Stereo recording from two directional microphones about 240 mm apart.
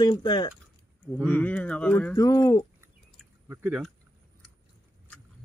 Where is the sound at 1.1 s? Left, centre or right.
Centre.